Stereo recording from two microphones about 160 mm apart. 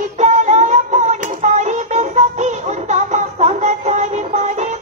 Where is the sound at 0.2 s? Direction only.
50° right (ahead or behind).